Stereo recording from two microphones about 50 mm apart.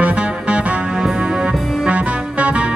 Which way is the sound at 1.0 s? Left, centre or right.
Centre.